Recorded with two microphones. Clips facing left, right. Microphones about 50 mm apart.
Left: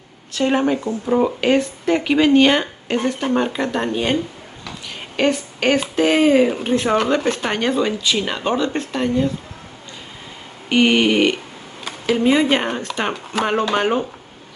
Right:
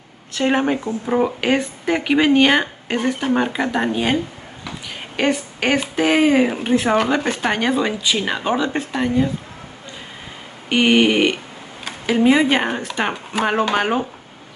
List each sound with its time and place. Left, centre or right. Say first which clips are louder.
0.3 s speech: even; right
1.0 s speech: left 2 dB; centre
10.7 s speech: even; centre